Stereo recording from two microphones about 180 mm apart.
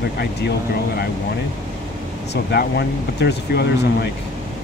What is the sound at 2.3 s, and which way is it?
Speech, 65° left (ahead or behind).